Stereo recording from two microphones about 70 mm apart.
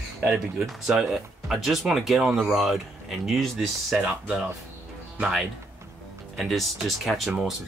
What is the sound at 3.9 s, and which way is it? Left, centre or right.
Speech, centre.